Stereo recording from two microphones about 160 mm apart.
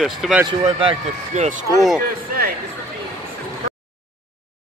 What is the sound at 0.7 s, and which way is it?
Speech, 40° right (ahead or behind).